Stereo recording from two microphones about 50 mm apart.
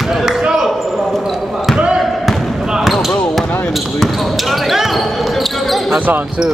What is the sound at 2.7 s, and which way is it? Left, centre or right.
Basketball bounce, centre.